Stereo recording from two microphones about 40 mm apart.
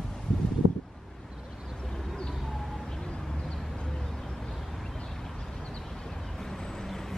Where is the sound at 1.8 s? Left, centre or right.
Centre.